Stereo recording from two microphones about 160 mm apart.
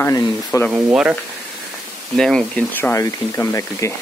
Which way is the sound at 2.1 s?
5° left (ahead or behind).